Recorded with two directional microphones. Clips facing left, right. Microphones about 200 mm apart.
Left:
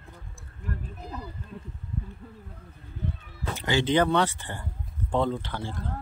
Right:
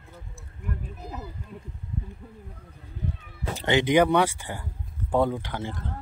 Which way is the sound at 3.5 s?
25° right (ahead or behind).